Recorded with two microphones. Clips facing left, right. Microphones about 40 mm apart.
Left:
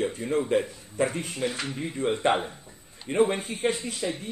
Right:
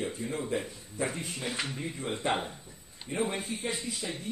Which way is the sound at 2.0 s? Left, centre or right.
Left.